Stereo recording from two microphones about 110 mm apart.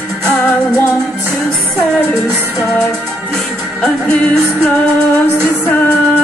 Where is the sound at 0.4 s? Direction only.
20° left (ahead or behind).